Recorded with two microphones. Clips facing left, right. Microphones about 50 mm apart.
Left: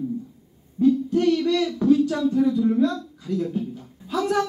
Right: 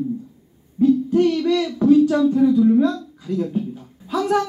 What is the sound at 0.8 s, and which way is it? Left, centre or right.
Hoot, right.